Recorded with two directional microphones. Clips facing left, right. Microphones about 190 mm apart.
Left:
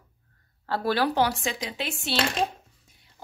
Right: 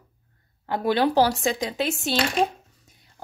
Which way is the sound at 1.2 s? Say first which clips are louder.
Right 5 dB; 40° right (ahead or behind).